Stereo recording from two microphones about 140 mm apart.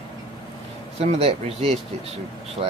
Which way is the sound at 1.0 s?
50° right (ahead or behind).